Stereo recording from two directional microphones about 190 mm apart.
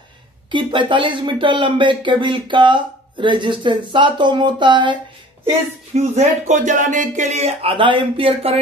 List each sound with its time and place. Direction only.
0.5 s speech: 25° right (ahead or behind)
5.9 s speech: 40° right (ahead or behind)